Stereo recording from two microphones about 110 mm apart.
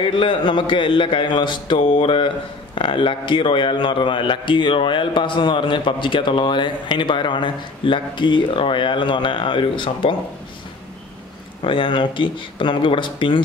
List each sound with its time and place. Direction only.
0.0 s a man's voice: 50° left (ahead or behind)
11.6 s a man's voice: 50° left (ahead or behind)